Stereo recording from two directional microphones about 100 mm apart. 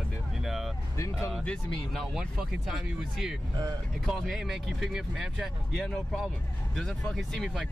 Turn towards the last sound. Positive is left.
turn(degrees=0)  # may be behind; listen again after turning